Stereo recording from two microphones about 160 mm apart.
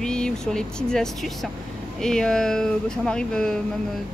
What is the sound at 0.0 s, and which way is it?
Speech, 5° left (ahead or behind).